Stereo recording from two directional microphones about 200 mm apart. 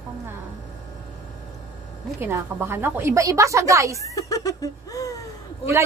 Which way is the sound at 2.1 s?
10° right (ahead or behind).